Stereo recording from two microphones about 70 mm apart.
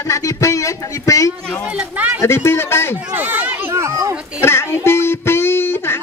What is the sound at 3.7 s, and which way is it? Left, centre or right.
Children playing, right.